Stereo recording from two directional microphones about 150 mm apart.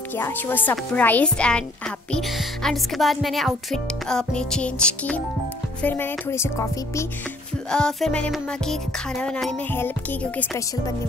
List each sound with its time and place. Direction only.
0.1 s a child's voice: 15° left (ahead or behind)
7.7 s a child's voice: 5° left (ahead or behind)